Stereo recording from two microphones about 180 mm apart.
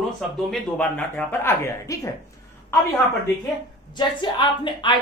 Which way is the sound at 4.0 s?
25° left (ahead or behind).